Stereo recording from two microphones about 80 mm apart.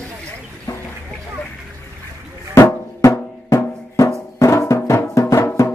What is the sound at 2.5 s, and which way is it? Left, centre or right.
Drum, left.